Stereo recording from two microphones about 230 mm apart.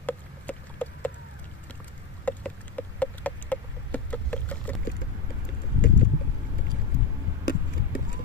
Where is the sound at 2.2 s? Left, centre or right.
Centre.